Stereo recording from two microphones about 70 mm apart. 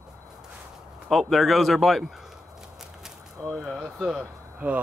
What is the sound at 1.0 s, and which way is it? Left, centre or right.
Speech, centre.